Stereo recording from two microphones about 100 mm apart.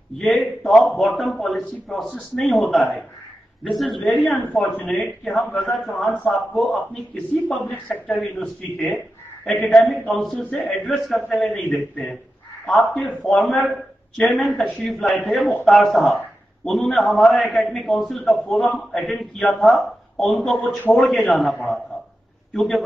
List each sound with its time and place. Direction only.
0.2 s a man's voice: centre (ahead or behind)
4.0 s a man's voice: 5° left (ahead or behind)
7.6 s speech: 15° left (ahead or behind)
8.1 s a man's voice: 5° left (ahead or behind)
10.3 s speech: 15° left (ahead or behind)
10.9 s a man's voice: centre (ahead or behind)